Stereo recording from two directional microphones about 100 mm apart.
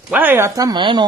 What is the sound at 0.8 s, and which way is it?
Speech, 50° right (ahead or behind).